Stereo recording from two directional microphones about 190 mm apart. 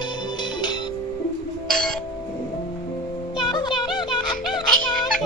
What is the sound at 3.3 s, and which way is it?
Music, 25° left (ahead or behind).